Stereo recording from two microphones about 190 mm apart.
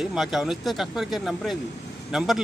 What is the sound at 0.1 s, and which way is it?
Speech, centre (ahead or behind).